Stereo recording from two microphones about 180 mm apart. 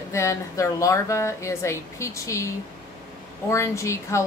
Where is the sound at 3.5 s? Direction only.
15° left (ahead or behind).